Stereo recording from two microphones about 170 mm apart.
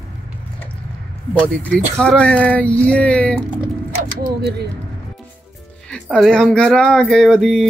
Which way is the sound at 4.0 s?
70° right (ahead or behind).